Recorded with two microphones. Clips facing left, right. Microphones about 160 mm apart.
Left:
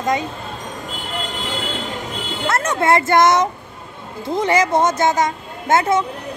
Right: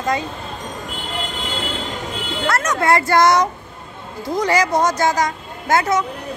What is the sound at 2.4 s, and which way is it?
Speech, 25° left (ahead or behind).